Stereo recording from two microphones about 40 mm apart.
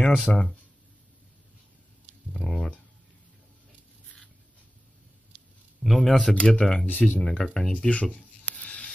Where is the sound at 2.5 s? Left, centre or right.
Left.